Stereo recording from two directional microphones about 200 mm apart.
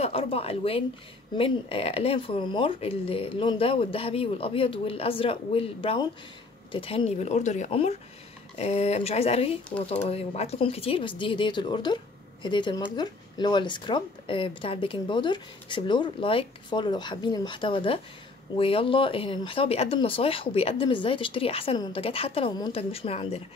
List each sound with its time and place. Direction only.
0.0 s a woman's voice: 30° left (ahead or behind)